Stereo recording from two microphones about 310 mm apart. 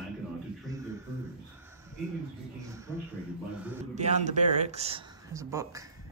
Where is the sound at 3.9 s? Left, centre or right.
Right.